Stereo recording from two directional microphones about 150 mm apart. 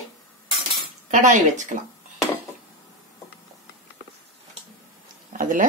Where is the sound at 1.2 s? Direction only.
55° right (ahead or behind).